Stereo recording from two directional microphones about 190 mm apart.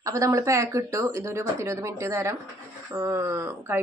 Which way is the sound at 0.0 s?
15° right (ahead or behind).